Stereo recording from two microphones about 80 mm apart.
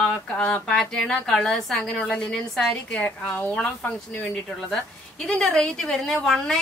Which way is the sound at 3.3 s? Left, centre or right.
Left.